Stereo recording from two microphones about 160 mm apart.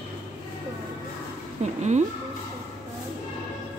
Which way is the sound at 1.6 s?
45° right (ahead or behind).